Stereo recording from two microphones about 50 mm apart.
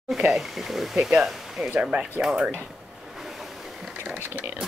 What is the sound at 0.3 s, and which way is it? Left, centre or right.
Speech, centre.